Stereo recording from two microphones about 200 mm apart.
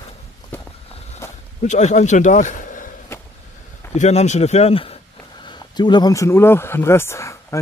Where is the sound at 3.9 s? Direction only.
35° left (ahead or behind).